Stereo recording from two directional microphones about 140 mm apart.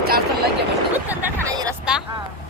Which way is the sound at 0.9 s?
15° right (ahead or behind).